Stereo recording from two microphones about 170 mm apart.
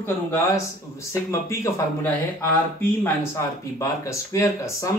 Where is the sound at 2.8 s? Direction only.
15° left (ahead or behind).